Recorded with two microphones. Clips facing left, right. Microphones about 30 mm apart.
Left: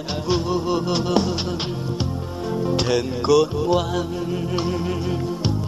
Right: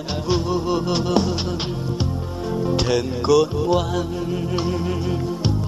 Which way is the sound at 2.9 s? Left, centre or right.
Centre.